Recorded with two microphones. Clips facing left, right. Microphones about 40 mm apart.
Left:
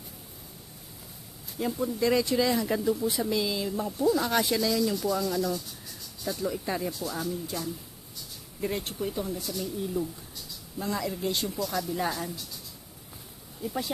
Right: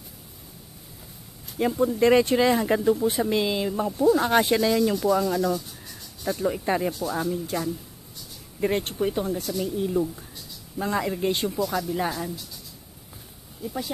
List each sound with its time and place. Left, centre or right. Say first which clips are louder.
1.6 s speech: right 7 dB; right